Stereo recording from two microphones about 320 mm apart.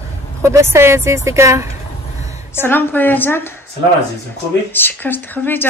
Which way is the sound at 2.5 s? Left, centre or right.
Centre.